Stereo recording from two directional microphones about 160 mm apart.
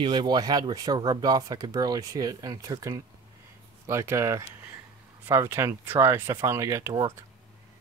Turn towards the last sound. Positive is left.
turn(degrees=-20)  # may be behind; listen again after turning